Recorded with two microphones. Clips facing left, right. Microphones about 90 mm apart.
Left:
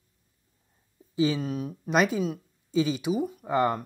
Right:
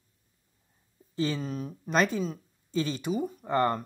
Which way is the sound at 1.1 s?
10° left (ahead or behind).